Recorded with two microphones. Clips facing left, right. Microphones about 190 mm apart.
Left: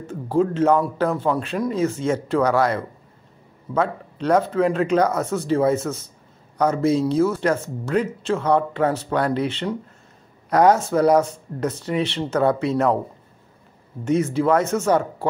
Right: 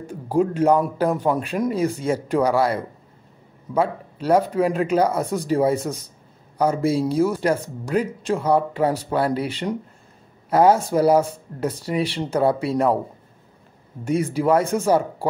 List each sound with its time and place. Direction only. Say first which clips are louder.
0.0 s speech: even; 15° right (ahead or behind)
14.0 s speech: left 1 dB; 10° right (ahead or behind)